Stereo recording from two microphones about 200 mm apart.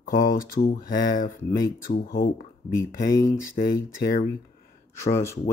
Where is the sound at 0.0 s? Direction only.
45° left (ahead or behind).